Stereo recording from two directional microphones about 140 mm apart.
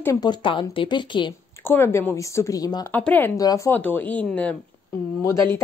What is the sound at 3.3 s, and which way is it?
Speech, 25° left (ahead or behind).